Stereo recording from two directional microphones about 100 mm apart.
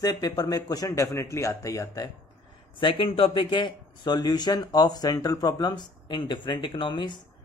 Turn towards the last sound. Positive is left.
turn(degrees=50)  # may be behind; listen again after turning